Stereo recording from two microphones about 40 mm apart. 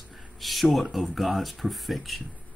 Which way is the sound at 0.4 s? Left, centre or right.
Centre.